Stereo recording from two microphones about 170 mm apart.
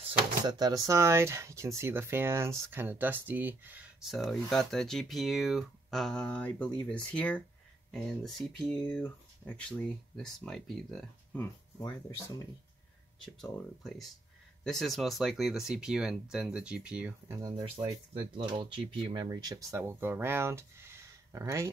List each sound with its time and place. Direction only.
0.0 s speech: 25° right (ahead or behind); by 11.4 s centre (ahead or behind)
13.2 s speech: centre (ahead or behind)
17.4 s speech: 20° right (ahead or behind)